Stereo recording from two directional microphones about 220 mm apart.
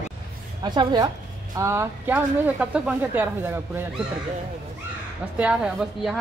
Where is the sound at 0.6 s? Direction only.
20° right (ahead or behind).